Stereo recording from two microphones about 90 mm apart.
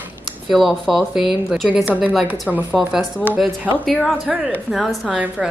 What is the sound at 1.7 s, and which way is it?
Speech, 15° right (ahead or behind).